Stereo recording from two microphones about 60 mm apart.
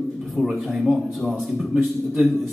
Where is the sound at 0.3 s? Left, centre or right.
Centre.